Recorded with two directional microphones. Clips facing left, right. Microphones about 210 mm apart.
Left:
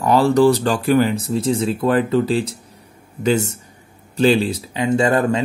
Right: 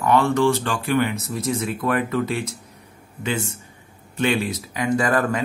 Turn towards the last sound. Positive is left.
turn(degrees=25)  # may be behind; listen again after turning